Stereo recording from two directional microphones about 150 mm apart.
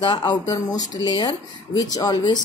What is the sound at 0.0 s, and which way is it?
Speech, 25° left (ahead or behind).